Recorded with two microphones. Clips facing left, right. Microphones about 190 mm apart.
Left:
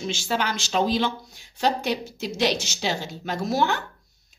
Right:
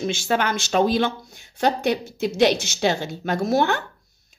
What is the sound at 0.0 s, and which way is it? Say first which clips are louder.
Speech: right 4 dB; 55° right (ahead or behind).